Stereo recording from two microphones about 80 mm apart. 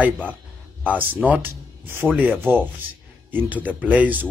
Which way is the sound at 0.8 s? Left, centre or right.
Right.